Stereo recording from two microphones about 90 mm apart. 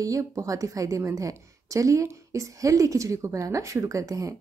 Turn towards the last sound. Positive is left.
turn(degrees=-40)  # may be behind; listen again after turning